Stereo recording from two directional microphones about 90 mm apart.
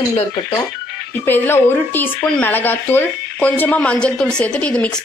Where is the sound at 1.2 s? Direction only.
25° left (ahead or behind).